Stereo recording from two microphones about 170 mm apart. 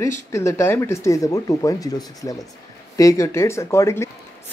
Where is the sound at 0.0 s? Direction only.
15° left (ahead or behind).